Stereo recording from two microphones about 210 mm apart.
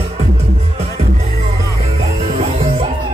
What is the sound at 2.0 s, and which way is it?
Music, 30° right (ahead or behind).